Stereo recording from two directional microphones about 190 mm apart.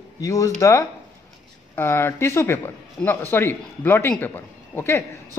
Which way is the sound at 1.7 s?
15° left (ahead or behind).